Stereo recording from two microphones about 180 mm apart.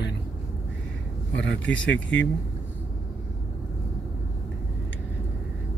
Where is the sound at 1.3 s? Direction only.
90° left.